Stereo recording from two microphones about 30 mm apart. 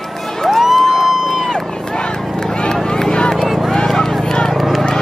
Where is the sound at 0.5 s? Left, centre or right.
Centre.